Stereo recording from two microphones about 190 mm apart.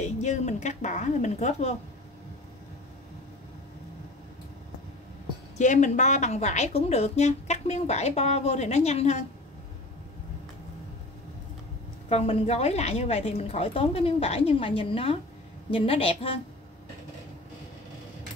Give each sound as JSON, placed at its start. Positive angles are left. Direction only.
{"t": 0.0, "sound": "a woman's voice", "side_deg": 35}
{"t": 5.6, "sound": "a woman's voice", "side_deg": 40}
{"t": 12.1, "sound": "a woman's voice", "side_deg": 35}